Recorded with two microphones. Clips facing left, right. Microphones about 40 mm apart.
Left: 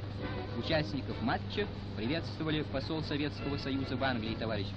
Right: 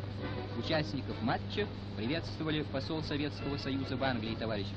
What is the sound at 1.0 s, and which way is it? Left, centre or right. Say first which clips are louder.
A man's voice: even; centre.